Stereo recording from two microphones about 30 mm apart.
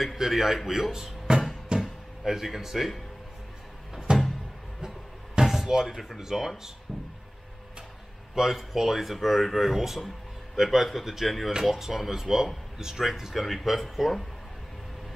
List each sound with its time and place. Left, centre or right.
0.0 s speech: centre
1.3 s music: right
1.8 s a sound: centre
2.4 s speech: centre
4.1 s music: right
5.4 s a sound: centre
6.1 s speech: centre
8.4 s speech: centre
13.3 s speech: centre